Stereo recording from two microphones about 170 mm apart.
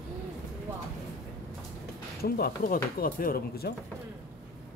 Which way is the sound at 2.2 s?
65° left (ahead or behind).